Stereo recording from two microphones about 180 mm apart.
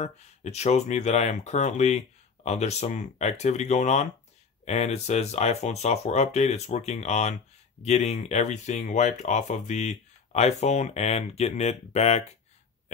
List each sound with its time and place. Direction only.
0.0 s speech: 40° left (ahead or behind)